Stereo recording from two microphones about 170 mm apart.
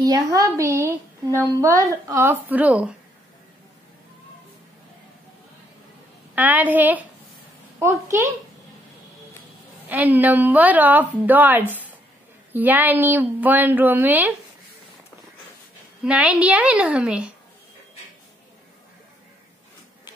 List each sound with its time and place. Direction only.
0.0 s a woman's voice: 20° right (ahead or behind)
6.3 s a woman's voice: 10° right (ahead or behind)
9.8 s a woman's voice: 10° right (ahead or behind)
16.0 s a woman's voice: 5° right (ahead or behind)